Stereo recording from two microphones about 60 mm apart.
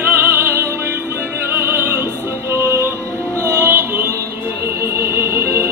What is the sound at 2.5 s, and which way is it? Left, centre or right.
Music, right.